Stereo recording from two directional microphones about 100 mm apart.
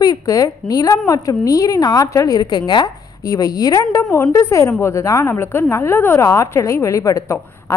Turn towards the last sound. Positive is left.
turn(degrees=30)  # may be behind; listen again after turning